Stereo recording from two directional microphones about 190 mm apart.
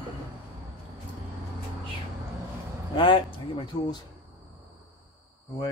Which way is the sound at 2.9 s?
25° left (ahead or behind).